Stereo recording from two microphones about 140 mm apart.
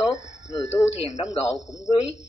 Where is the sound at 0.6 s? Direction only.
50° left (ahead or behind).